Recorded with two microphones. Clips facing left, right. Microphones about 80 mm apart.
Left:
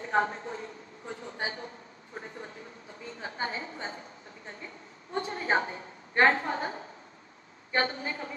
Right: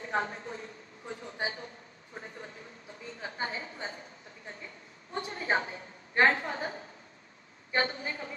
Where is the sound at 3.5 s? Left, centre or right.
Left.